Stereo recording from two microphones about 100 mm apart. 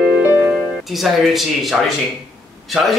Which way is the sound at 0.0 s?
15° right (ahead or behind).